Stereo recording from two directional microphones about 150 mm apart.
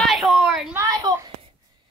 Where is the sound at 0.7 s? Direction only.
25° right (ahead or behind).